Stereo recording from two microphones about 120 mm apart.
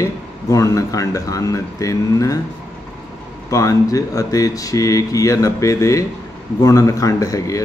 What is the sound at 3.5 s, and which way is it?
A man's voice, 25° left (ahead or behind).